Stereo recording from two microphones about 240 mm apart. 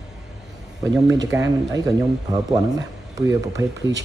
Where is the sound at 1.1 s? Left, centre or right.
Centre.